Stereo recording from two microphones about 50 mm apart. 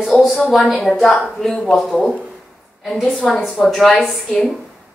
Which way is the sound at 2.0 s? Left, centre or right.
Left.